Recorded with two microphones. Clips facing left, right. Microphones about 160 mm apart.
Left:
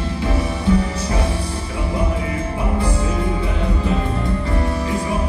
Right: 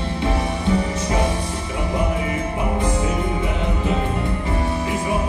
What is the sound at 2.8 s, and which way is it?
Music, 20° right (ahead or behind).